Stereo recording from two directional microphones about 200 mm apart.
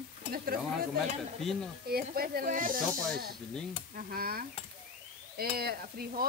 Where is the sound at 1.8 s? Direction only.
50° right (ahead or behind).